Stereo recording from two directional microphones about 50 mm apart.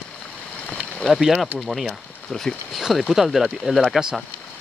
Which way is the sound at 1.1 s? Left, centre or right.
Centre.